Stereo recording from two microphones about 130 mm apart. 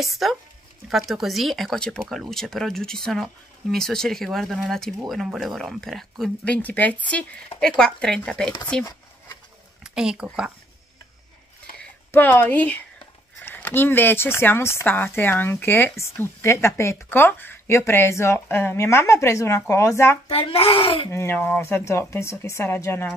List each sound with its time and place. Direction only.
0.0 s speech: centre (ahead or behind)
9.8 s speech: 5° right (ahead or behind)
11.8 s speech: 15° left (ahead or behind)
20.2 s a child's voice: 50° left (ahead or behind)
21.1 s speech: 20° left (ahead or behind)